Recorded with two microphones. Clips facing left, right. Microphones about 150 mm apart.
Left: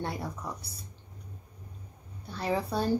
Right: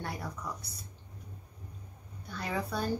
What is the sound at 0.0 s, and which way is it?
Speech, 25° left (ahead or behind).